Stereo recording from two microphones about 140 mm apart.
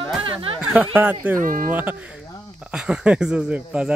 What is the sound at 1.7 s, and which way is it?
Speech, 10° right (ahead or behind).